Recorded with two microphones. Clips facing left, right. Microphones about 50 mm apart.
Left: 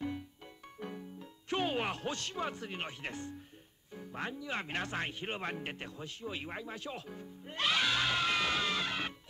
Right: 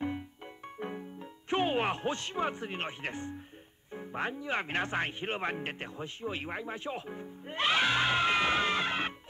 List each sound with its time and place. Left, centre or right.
0.7 s speech: right